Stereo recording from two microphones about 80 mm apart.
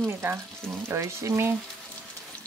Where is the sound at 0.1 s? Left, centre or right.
Right.